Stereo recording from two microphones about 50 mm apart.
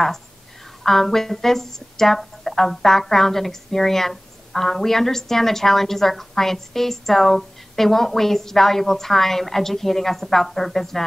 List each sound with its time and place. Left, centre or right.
0.8 s speech: centre